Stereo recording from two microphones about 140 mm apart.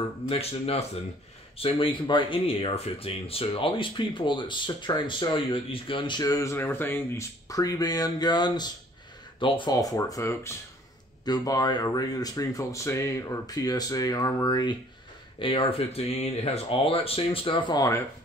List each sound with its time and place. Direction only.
0.3 s speech: 45° left (ahead or behind); by 18.0 s 25° left (ahead or behind)